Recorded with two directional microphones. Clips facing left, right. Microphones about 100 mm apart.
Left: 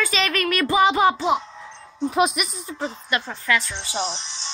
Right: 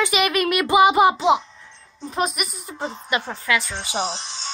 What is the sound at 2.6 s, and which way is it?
A child's voice, 15° right (ahead or behind).